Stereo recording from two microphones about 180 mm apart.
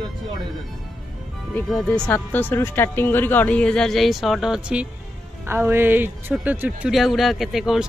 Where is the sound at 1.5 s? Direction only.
5° left (ahead or behind).